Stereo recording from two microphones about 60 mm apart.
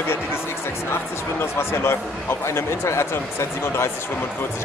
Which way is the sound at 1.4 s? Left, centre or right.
Left.